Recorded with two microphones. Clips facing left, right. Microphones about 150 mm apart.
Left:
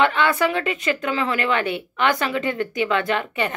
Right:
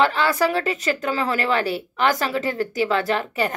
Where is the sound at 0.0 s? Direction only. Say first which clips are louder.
Even; 35° right (ahead or behind).